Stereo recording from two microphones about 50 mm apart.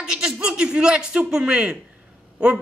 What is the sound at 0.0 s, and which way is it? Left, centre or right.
Speech, centre.